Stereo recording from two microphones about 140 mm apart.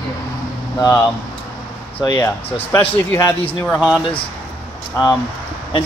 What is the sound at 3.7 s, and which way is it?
Speech, 10° right (ahead or behind).